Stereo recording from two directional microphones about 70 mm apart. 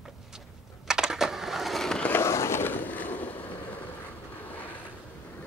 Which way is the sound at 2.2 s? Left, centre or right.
Left.